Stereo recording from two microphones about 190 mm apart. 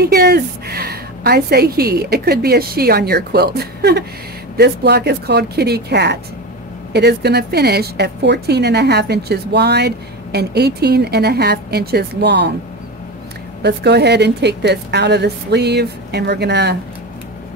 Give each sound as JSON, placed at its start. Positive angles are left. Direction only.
{"t": 0.0, "sound": "a woman's voice", "side_deg": -55}
{"t": 13.6, "sound": "a woman's voice", "side_deg": -60}